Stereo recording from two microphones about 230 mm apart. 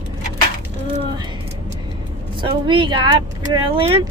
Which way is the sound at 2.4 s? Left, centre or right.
Right.